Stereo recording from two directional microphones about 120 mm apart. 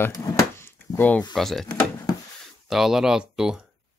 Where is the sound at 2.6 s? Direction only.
5° right (ahead or behind).